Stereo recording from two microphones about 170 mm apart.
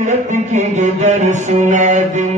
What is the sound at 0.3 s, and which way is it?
Mantra, 45° right (ahead or behind).